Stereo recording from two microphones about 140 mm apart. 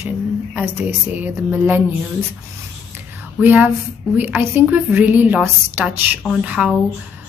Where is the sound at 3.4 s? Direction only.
10° right (ahead or behind).